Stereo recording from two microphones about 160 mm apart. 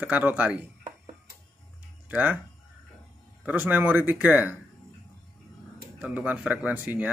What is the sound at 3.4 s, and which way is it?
Speech, 10° right (ahead or behind).